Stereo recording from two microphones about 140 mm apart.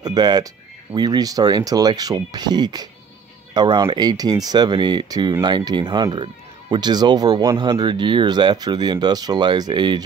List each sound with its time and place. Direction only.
0.0 s speech: 30° right (ahead or behind)